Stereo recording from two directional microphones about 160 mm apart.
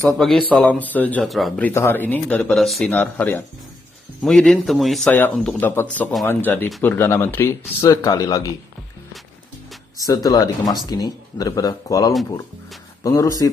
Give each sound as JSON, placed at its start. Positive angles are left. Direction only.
{"t": 0.1, "sound": "a man's voice", "side_deg": 0}
{"t": 1.7, "sound": "a man's voice", "side_deg": 15}
{"t": 9.9, "sound": "speech", "side_deg": 25}